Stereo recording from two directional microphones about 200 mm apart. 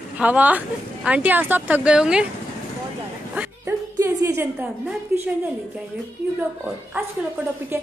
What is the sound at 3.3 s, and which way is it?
Music, 10° right (ahead or behind).